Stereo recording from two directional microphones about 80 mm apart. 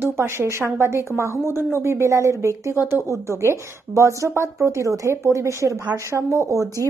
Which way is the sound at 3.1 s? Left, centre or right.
Right.